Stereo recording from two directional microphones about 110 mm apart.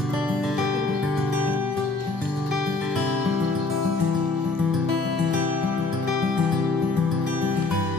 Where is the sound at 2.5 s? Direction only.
5° right (ahead or behind).